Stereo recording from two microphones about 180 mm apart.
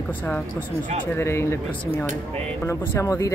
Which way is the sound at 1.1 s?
15° left (ahead or behind).